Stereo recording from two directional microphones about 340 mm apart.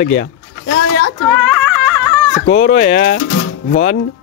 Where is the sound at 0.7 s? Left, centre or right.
Left.